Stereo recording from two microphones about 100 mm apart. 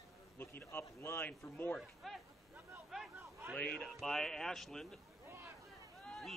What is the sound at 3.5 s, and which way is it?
A man's voice, 10° left (ahead or behind).